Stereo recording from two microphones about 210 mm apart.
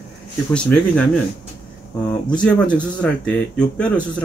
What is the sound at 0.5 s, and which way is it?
Speech, 5° left (ahead or behind).